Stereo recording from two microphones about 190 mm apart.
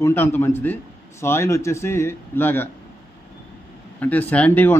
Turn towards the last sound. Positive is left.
turn(degrees=10)  # may be behind; listen again after turning